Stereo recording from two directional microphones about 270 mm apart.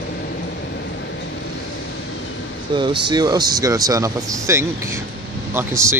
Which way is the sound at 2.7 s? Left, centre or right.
Centre.